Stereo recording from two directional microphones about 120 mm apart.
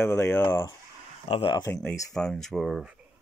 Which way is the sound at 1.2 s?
45° left (ahead or behind).